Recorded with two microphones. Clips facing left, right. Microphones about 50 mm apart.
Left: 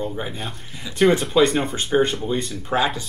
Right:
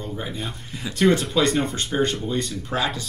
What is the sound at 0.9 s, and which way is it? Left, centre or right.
Speech, centre.